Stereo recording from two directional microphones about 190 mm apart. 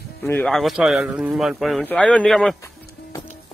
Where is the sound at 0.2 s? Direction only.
10° left (ahead or behind).